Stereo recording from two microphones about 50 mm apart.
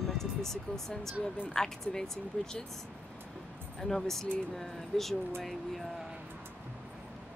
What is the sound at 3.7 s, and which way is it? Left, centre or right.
Speech, centre.